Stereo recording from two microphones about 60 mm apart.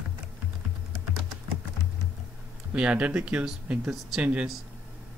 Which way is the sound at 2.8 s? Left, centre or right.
Centre.